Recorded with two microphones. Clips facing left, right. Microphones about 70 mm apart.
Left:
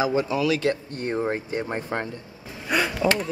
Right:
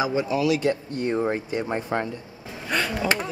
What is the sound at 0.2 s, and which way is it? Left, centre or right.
Speech, centre.